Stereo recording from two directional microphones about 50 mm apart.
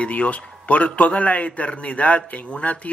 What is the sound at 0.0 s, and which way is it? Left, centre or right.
A man's voice, left.